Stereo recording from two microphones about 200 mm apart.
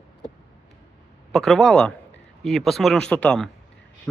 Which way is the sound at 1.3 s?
Centre (ahead or behind).